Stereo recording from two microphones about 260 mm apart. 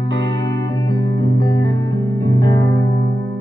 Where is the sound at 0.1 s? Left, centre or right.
Right.